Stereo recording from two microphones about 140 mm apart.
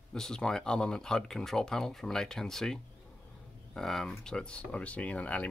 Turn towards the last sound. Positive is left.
turn(degrees=10)  # may be behind; listen again after turning